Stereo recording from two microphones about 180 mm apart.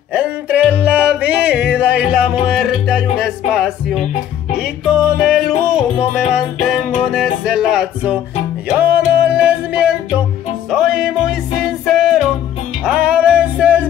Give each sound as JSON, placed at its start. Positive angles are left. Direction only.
{"t": 0.1, "sound": "music", "side_deg": -5}
{"t": 1.6, "sound": "music", "side_deg": 65}
{"t": 2.0, "sound": "music", "side_deg": -5}